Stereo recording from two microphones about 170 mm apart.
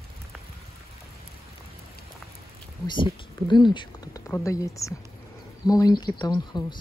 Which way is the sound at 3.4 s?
25° left (ahead or behind).